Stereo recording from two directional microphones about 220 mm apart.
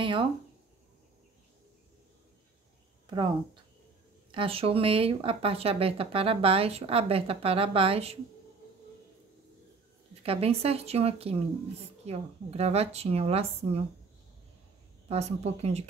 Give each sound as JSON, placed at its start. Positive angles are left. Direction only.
{"t": 0.0, "sound": "speech", "side_deg": -25}
{"t": 4.3, "sound": "speech", "side_deg": -25}
{"t": 10.2, "sound": "speech", "side_deg": -25}
{"t": 15.0, "sound": "speech", "side_deg": -30}